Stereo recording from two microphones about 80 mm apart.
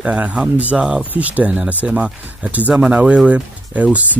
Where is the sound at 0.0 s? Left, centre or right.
Centre.